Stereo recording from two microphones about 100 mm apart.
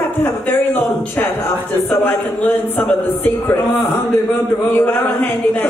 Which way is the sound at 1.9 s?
20° left (ahead or behind).